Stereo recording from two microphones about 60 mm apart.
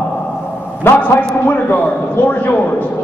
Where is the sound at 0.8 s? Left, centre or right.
Left.